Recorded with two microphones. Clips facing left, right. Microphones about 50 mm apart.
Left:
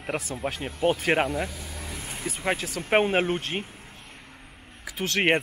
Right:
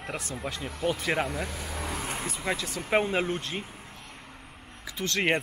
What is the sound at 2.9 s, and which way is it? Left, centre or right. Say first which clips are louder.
Speech: left 4 dB; left.